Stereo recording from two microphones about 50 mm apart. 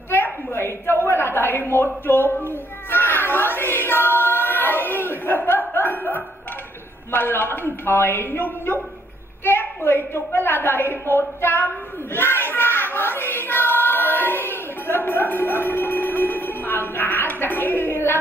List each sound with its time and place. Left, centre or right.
0.5 s a sound: left
2.0 s a man's voice: left
2.4 s child singing: left
5.7 s music: left
7.1 s a man's voice: left
9.4 s a sound: left
9.8 s a woman's voice: left